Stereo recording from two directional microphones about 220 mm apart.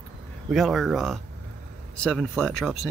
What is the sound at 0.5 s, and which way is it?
Speech, centre (ahead or behind).